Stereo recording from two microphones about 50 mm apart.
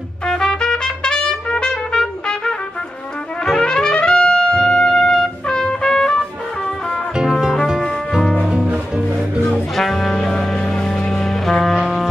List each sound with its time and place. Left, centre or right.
0.2 s trumpet: centre
3.5 s trumpet: centre
7.2 s music: centre
8.6 s music: centre
9.5 s music: centre